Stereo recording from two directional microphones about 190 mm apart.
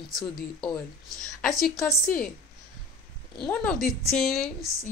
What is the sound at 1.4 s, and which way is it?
Speech, centre (ahead or behind).